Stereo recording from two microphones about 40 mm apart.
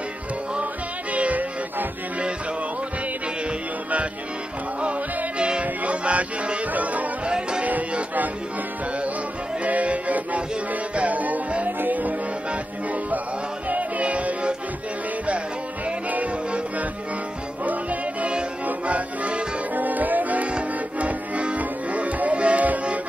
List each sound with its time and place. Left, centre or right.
1.1 s music: right
5.4 s music: right
7.2 s music: right
7.6 s music: right
9.6 s music: right
13.7 s music: right
16.1 s music: right
18.7 s music: right
19.7 s music: right